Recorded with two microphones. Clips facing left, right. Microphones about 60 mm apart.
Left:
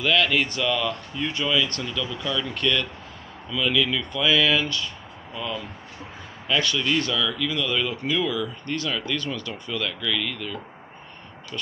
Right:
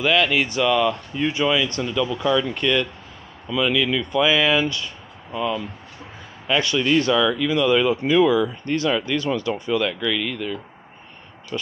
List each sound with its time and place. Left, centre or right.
0.0 s speech: centre